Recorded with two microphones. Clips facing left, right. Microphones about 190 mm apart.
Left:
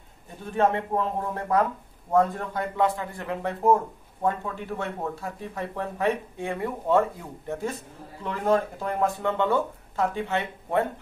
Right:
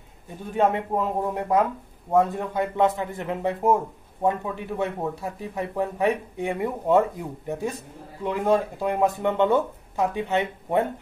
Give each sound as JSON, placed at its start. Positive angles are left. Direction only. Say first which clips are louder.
{"t": 0.6, "sound": "speech", "louder": "right 1 dB", "side_deg": -15}